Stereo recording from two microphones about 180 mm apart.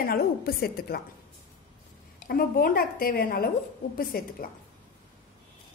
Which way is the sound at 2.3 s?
55° left (ahead or behind).